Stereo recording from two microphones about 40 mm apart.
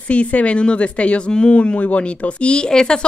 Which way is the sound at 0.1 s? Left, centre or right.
Left.